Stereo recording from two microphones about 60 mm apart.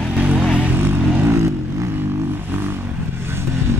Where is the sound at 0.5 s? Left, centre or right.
Right.